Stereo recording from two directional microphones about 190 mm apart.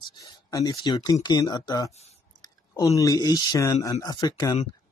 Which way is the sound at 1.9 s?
35° left (ahead or behind).